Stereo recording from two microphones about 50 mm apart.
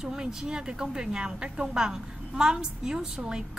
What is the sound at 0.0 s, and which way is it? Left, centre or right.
A woman's voice, centre.